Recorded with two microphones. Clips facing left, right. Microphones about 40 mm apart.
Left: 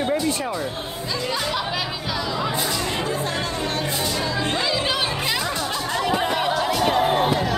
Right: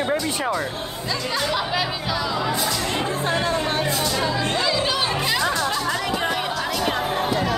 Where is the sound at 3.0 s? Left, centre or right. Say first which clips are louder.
Right 1 dB; right.